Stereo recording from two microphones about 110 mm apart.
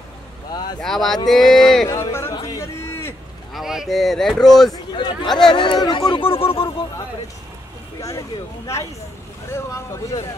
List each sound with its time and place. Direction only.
0.7 s speech: 5° left (ahead or behind)
1.9 s music: 25° left (ahead or behind)
2.4 s a sound: 30° left (ahead or behind)
3.5 s speech: 5° right (ahead or behind)
5.5 s speech: 50° left (ahead or behind)
8.0 s speech: 30° left (ahead or behind)